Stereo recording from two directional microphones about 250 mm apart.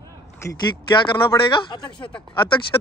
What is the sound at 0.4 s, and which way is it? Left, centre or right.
Speech, centre.